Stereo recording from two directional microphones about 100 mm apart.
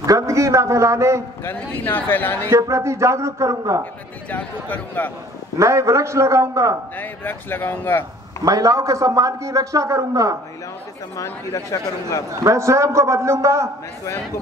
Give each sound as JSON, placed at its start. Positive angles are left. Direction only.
{"t": 0.0, "sound": "a man's voice", "side_deg": -35}
{"t": 1.4, "sound": "speech", "side_deg": 20}
{"t": 2.5, "sound": "a man's voice", "side_deg": -30}
{"t": 4.3, "sound": "speech", "side_deg": 15}
{"t": 5.6, "sound": "a man's voice", "side_deg": -30}
{"t": 7.0, "sound": "speech", "side_deg": 20}
{"t": 8.5, "sound": "a man's voice", "side_deg": -35}
{"t": 11.1, "sound": "speech", "side_deg": 30}
{"t": 12.3, "sound": "a man's voice", "side_deg": -30}